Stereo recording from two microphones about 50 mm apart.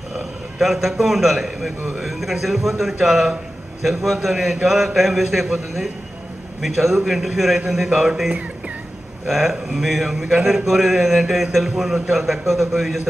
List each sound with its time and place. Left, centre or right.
0.6 s a man's voice: centre
8.3 s music: right
9.2 s a man's voice: centre